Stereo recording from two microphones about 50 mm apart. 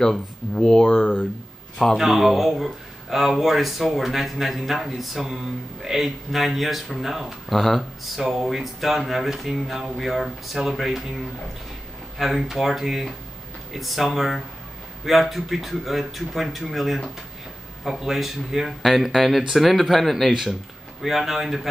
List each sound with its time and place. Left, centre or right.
0.0 s speech: centre
0.9 s speech: left
2.0 s speech: centre